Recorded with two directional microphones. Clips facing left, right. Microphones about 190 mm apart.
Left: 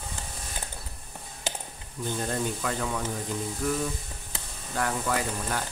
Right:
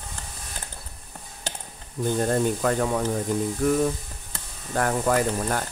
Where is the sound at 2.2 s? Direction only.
45° right (ahead or behind).